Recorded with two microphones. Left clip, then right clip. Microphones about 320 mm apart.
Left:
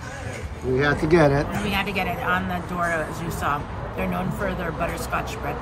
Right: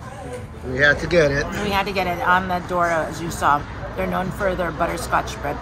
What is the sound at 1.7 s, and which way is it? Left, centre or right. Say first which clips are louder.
A woman's voice: right 5 dB; centre.